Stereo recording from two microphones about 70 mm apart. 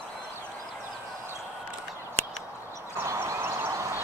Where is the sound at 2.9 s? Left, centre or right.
Right.